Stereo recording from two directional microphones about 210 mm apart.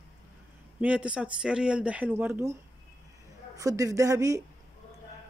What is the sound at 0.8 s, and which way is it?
Speech, 5° right (ahead or behind).